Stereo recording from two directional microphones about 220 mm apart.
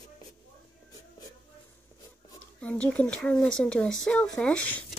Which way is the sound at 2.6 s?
5° left (ahead or behind).